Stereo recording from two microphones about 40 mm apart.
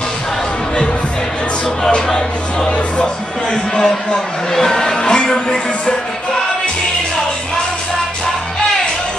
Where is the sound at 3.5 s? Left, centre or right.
Centre.